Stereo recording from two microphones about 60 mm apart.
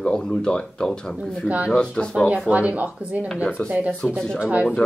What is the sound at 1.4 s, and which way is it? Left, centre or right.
Speech, right.